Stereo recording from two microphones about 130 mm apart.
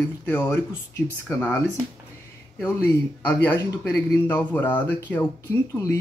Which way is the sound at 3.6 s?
25° left (ahead or behind).